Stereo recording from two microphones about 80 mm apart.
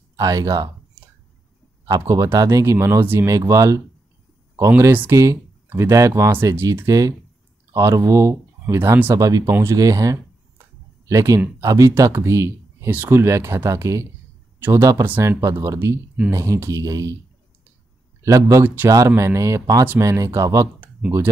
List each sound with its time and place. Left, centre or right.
0.1 s speech: right
2.3 s speech: right
5.1 s speech: right
9.1 s speech: right
9.5 s speech: right
9.8 s speech: right
18.2 s speech: right